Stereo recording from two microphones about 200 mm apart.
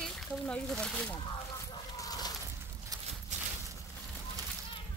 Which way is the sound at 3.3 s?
35° right (ahead or behind).